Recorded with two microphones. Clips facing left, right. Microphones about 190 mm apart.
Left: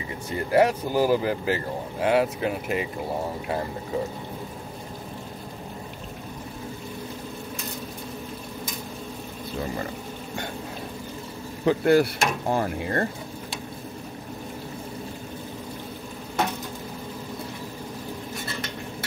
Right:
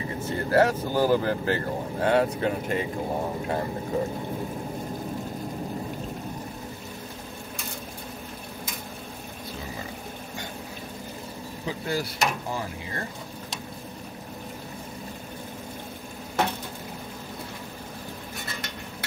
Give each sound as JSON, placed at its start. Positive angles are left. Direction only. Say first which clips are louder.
{"t": 0.3, "sound": "speech", "louder": "left 1 dB", "side_deg": 15}
{"t": 11.6, "sound": "speech", "louder": "left 11 dB", "side_deg": 65}